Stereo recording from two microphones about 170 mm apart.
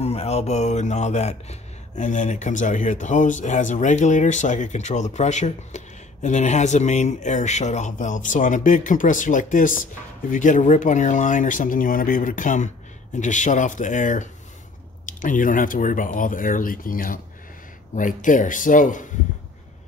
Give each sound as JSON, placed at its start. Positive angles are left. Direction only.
{"t": 0.0, "sound": "speech", "side_deg": 40}